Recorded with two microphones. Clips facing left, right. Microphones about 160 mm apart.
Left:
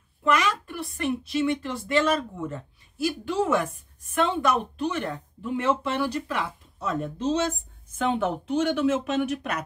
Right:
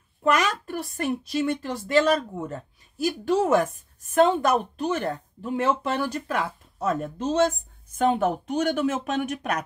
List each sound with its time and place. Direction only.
0.2 s a woman's voice: 45° right (ahead or behind)